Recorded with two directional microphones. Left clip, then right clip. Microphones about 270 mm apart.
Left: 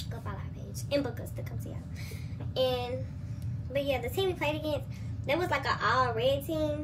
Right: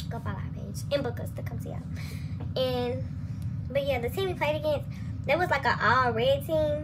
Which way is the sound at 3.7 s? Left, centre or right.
Centre.